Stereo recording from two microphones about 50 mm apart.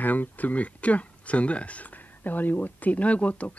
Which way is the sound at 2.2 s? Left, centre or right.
Left.